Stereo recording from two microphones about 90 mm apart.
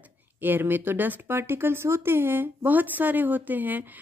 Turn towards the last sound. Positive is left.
turn(degrees=-20)  # may be behind; listen again after turning